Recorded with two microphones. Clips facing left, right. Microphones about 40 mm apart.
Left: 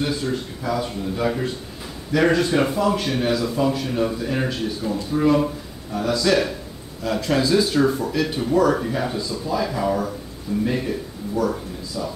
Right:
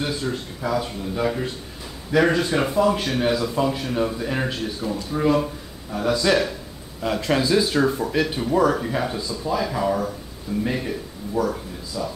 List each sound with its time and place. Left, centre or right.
0.0 s speech: centre